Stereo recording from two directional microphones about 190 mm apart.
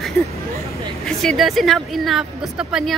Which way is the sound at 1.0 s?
Centre (ahead or behind).